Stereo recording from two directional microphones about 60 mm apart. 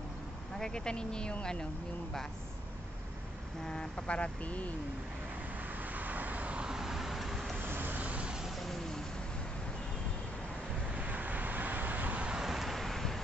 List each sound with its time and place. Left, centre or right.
0.6 s speech: centre
3.6 s speech: centre
5.6 s vehicle: right
6.7 s vehicle: centre
7.6 s vehicle: right; by 8.5 s centre
8.5 s vehicle: centre
11.0 s vehicle: right
12.4 s vehicle: centre